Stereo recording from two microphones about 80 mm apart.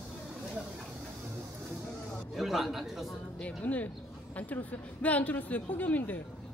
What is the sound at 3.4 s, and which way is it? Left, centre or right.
A woman's voice, centre.